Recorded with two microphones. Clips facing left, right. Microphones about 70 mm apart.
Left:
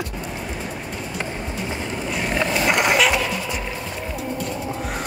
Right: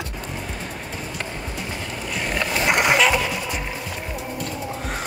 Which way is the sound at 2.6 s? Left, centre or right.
Right.